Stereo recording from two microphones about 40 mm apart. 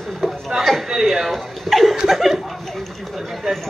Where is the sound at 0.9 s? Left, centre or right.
Centre.